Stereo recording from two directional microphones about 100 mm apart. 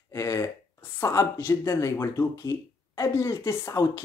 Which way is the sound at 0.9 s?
25° left (ahead or behind).